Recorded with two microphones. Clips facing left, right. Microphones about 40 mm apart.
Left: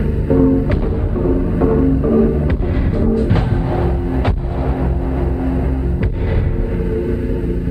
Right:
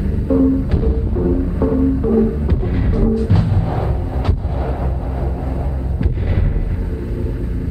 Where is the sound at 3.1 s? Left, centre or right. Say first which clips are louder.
Left 2 dB; left.